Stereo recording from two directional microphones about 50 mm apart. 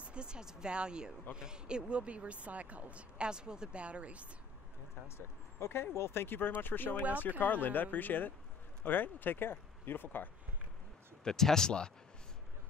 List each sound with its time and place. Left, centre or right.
0.0 s speech: centre
5.0 s speech: left
11.2 s speech: centre